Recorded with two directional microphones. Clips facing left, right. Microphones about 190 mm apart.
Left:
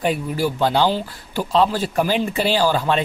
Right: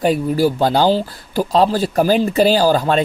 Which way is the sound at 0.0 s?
40° right (ahead or behind).